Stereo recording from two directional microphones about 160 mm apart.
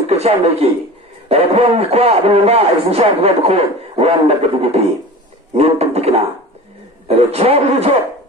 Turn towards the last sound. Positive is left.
turn(degrees=-40)  # may be behind; listen again after turning